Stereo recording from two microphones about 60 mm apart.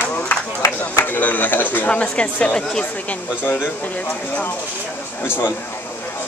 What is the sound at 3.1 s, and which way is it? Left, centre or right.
Speech, left.